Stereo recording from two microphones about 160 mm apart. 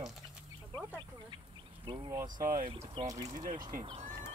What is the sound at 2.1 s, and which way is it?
Speech, 20° right (ahead or behind).